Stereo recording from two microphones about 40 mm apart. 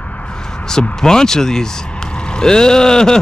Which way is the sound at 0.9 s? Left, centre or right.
Centre.